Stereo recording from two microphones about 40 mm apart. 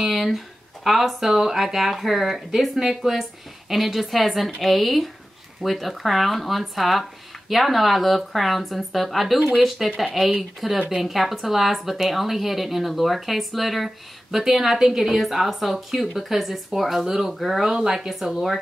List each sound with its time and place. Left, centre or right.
0.0 s speech: centre